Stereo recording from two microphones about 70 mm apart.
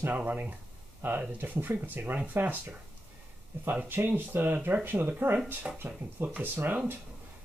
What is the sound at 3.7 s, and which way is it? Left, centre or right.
Speech, right.